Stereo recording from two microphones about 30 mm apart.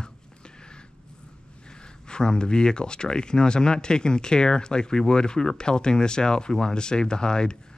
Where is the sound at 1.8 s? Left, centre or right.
Left.